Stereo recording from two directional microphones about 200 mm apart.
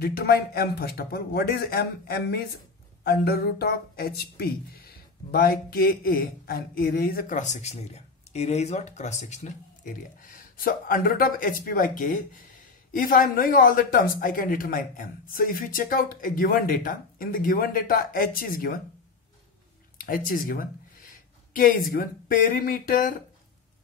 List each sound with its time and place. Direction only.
0.0 s speech: 50° left (ahead or behind)
20.0 s speech: 45° left (ahead or behind)